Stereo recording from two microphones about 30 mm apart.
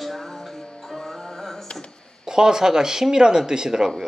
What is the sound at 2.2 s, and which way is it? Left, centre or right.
Speech, right.